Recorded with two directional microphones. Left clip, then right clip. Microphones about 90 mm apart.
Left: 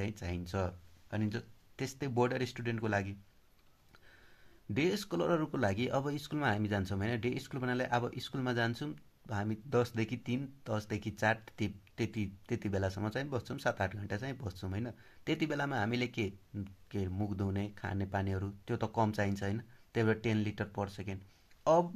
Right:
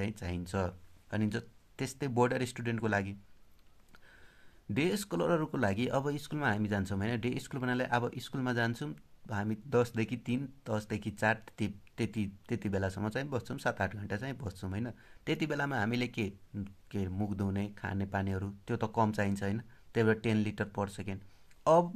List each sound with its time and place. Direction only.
0.0 s speech: 30° right (ahead or behind)
1.1 s speech: 60° right (ahead or behind)
1.8 s speech: 35° right (ahead or behind)
4.7 s speech: 30° right (ahead or behind)